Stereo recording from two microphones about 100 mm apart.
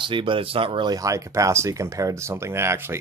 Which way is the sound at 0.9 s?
35° right (ahead or behind).